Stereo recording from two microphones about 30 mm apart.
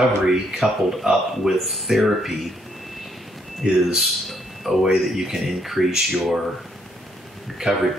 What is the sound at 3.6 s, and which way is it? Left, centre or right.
Speech, centre.